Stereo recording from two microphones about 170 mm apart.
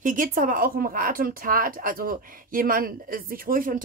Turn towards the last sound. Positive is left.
turn(degrees=-55)  # may be behind; listen again after turning